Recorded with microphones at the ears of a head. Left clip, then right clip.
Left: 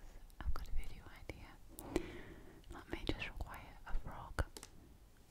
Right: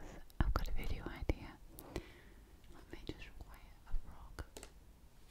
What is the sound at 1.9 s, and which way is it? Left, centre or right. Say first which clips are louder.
Whispering: left 8 dB; left.